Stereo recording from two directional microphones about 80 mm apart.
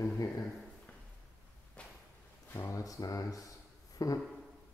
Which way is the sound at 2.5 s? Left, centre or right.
Left.